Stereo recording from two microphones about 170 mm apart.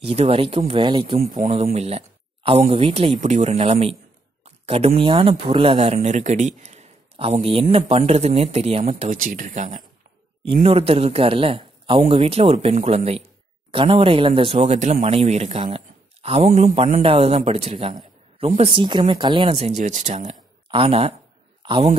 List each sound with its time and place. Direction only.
0.0 s speech: 35° right (ahead or behind)
1.2 s speech: 50° right (ahead or behind)
9.1 s speech: 50° right (ahead or behind)
10.5 s a man's voice: 35° right (ahead or behind)